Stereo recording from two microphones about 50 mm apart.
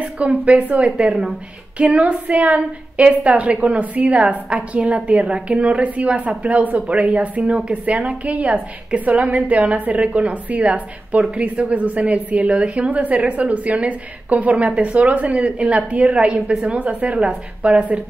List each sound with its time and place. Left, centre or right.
0.0 s a woman's voice: right